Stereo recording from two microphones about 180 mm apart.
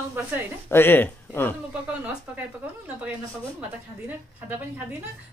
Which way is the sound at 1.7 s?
5° right (ahead or behind).